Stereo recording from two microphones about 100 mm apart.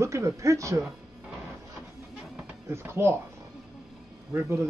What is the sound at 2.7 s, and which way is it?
Speech, 25° right (ahead or behind).